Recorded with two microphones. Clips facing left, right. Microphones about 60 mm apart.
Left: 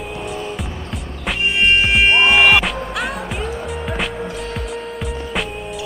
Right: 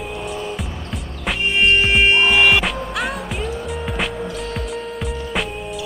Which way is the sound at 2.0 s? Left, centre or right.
Centre.